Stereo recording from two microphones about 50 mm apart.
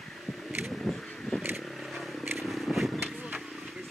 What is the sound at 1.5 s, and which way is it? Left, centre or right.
Vehicle, centre.